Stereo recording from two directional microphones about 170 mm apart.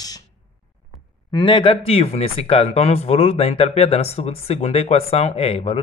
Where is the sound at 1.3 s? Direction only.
30° left (ahead or behind).